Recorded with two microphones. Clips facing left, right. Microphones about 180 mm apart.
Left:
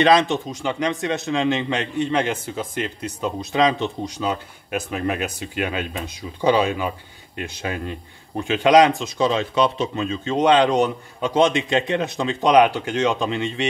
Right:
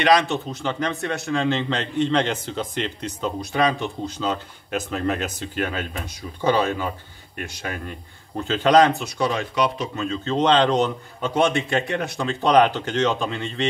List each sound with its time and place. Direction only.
0.0 s speech: 25° left (ahead or behind)
0.5 s speech: 15° left (ahead or behind)
3.3 s speech: 20° left (ahead or behind)